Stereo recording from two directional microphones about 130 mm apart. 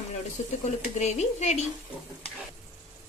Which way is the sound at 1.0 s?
60° left (ahead or behind).